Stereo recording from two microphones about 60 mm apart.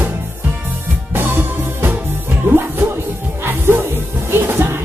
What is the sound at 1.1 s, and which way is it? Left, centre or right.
Music, right.